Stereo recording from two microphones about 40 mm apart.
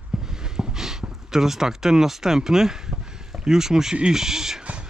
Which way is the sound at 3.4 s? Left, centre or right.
Centre.